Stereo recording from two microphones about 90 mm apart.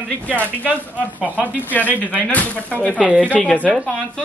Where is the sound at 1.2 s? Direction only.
15° right (ahead or behind).